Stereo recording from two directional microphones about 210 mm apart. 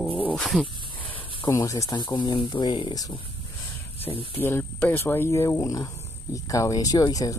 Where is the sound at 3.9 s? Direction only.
25° left (ahead or behind).